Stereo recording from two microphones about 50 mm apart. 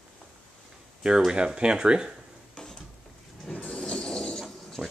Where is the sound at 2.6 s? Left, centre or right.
Centre.